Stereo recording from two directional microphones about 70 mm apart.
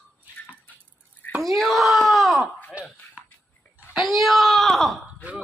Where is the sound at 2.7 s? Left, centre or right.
Centre.